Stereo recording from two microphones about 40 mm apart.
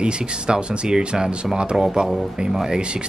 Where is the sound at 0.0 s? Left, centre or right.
Right.